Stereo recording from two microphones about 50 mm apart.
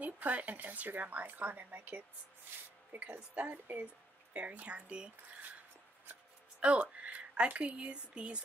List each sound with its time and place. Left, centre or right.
0.0 s a woman's voice: right
6.6 s a woman's voice: right